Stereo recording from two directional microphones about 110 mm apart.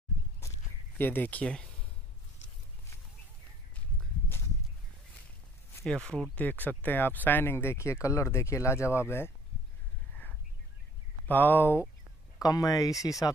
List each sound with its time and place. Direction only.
0.9 s speech: 20° left (ahead or behind)
5.9 s speech: 5° left (ahead or behind); by 9.3 s 20° left (ahead or behind)
11.2 s speech: 15° left (ahead or behind)
12.4 s speech: 35° left (ahead or behind)